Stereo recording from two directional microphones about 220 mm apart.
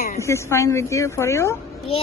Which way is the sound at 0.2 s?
10° left (ahead or behind).